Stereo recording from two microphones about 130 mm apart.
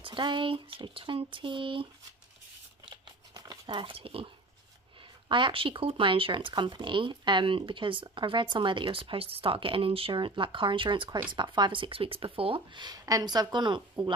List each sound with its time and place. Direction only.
0.0 s speech: 40° right (ahead or behind)
2.8 s a sound: 40° right (ahead or behind)
5.3 s speech: 40° right (ahead or behind)